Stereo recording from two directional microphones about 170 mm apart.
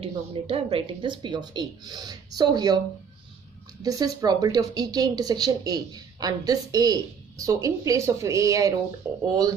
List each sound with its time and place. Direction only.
0.0 s speech: 35° right (ahead or behind)
3.8 s speech: 20° right (ahead or behind)